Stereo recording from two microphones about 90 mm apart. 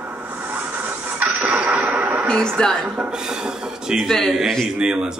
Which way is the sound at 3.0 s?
10° right (ahead or behind).